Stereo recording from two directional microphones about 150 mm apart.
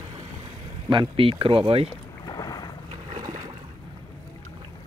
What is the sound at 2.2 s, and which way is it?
Boat, 25° left (ahead or behind).